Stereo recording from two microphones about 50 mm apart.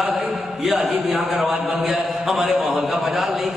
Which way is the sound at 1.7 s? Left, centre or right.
Centre.